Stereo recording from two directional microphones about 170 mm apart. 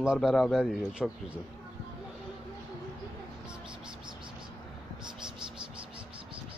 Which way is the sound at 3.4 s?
5° right (ahead or behind).